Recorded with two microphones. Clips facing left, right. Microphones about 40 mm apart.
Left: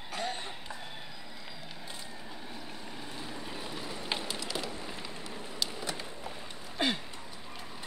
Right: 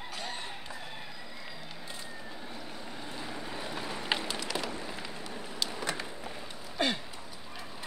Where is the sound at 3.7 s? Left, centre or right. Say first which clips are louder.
Right 3 dB; right.